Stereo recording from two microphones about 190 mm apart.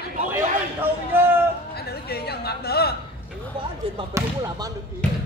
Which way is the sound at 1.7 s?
55° left (ahead or behind).